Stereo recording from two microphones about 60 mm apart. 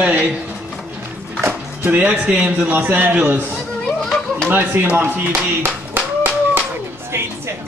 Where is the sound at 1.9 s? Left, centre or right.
Right.